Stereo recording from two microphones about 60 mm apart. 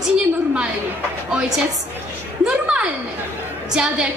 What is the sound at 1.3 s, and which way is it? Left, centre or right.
Speech, centre.